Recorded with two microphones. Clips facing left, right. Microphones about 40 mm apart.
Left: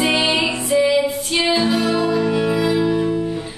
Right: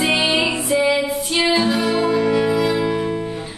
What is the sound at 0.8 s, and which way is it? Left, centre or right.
Female singing, centre.